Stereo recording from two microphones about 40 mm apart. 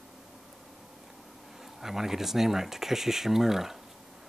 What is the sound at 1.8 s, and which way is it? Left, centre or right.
Speech, centre.